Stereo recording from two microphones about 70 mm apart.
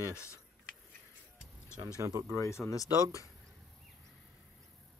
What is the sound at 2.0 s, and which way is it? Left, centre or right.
Speech, right.